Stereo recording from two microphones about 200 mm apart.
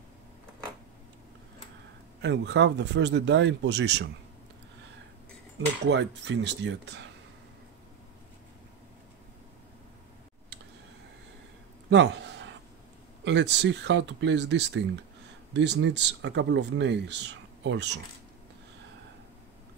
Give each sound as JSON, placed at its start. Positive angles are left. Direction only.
{"t": 2.2, "sound": "speech", "side_deg": -60}
{"t": 5.9, "sound": "speech", "side_deg": -60}
{"t": 11.9, "sound": "a man's voice", "side_deg": -65}